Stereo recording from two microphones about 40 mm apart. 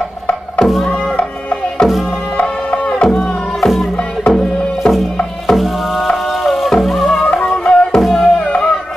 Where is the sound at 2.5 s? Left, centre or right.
Left.